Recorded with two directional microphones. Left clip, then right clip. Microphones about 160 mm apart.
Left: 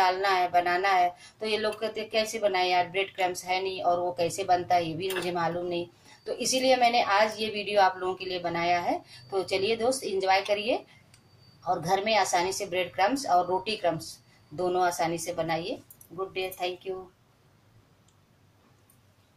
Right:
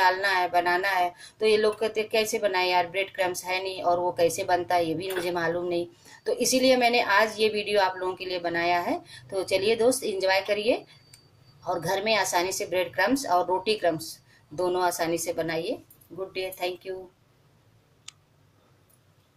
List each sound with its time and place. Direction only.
0.0 s a woman's voice: 35° right (ahead or behind)